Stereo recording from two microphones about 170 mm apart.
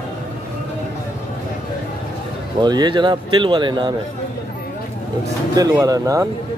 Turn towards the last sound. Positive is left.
turn(degrees=-20)  # may be behind; listen again after turning